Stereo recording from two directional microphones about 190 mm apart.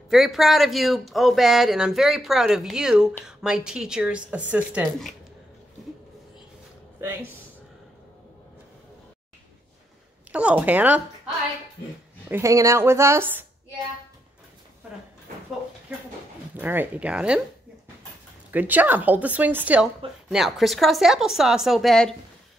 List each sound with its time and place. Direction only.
0.1 s speech: centre (ahead or behind)
7.0 s speech: 10° right (ahead or behind)
10.3 s speech: 5° right (ahead or behind)
12.3 s speech: 15° right (ahead or behind)
16.5 s speech: 10° right (ahead or behind)
18.5 s speech: 10° right (ahead or behind)